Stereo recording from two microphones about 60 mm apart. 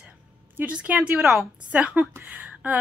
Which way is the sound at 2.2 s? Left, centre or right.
Right.